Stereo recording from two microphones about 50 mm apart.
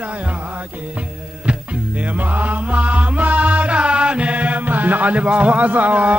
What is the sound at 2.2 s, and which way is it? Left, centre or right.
Music, right.